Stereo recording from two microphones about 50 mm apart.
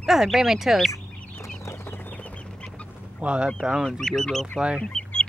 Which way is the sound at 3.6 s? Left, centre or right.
Centre.